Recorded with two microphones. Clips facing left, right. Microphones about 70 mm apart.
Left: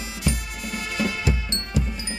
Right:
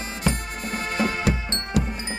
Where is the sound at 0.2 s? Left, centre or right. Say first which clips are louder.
Right 2 dB; right.